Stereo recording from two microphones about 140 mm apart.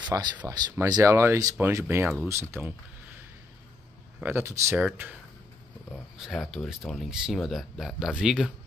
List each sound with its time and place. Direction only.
0.1 s speech: 20° right (ahead or behind)
4.2 s speech: 15° right (ahead or behind)
6.1 s speech: 5° right (ahead or behind)